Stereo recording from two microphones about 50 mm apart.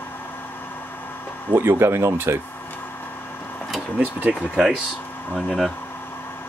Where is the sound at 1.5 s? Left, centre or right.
Right.